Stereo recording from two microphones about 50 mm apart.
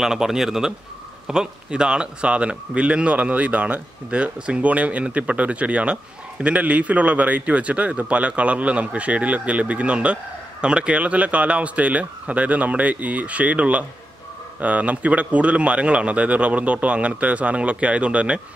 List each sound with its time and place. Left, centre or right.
0.0 s a man's voice: centre